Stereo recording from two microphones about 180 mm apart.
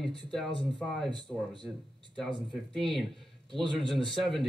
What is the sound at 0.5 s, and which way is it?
Speech, 30° left (ahead or behind).